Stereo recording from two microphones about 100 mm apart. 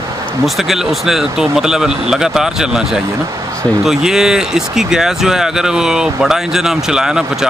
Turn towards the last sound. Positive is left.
turn(degrees=-5)  # may be behind; listen again after turning